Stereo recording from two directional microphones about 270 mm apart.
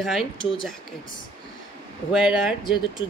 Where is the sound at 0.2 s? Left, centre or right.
Centre.